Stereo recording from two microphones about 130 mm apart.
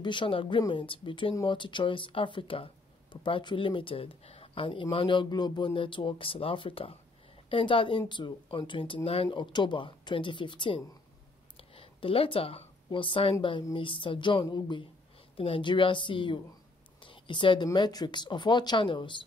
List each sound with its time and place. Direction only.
0.0 s a woman's voice: 40° left (ahead or behind)
17.0 s whispering: 40° left (ahead or behind)
17.7 s speech: 35° left (ahead or behind)